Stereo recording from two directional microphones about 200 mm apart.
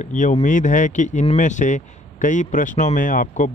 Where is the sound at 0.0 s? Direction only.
40° left (ahead or behind).